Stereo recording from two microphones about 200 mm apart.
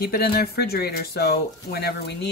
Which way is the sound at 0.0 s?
50° left (ahead or behind).